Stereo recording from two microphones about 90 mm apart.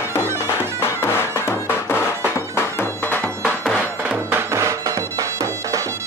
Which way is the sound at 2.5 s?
25° left (ahead or behind).